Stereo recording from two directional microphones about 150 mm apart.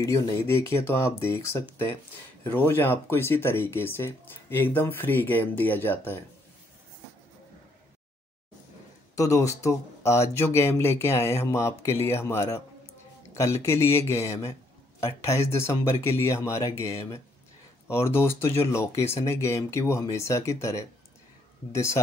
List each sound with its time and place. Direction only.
0.5 s speech: 15° left (ahead or behind)
9.1 s speech: 20° left (ahead or behind)